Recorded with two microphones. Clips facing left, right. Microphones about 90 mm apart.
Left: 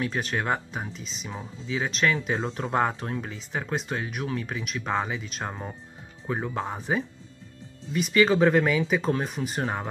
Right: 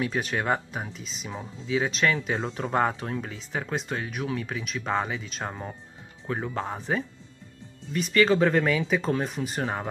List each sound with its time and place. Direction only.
0.0 s speech: centre (ahead or behind)